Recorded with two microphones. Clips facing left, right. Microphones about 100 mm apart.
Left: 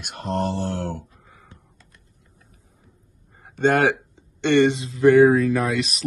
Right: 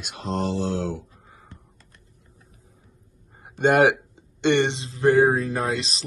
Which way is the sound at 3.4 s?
15° right (ahead or behind).